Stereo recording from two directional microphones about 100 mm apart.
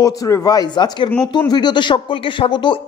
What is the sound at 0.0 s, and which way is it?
A man's voice, 35° left (ahead or behind).